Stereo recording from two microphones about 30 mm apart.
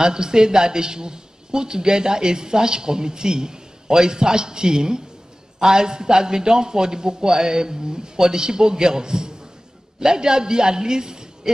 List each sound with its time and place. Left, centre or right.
0.0 s a woman's voice: right